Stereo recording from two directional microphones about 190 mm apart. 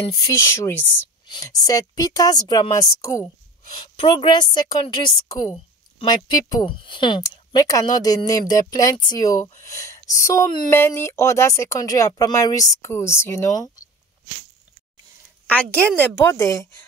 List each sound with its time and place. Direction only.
0.5 s speech: 15° left (ahead or behind)
3.8 s speech: 25° left (ahead or behind)
15.4 s a woman's voice: 5° left (ahead or behind)